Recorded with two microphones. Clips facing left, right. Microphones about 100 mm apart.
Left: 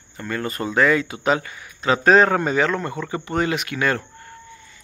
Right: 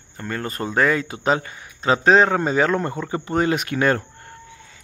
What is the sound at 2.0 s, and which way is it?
Speech, 15° right (ahead or behind).